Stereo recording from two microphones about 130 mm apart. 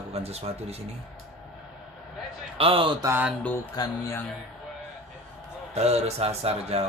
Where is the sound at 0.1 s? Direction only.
50° right (ahead or behind).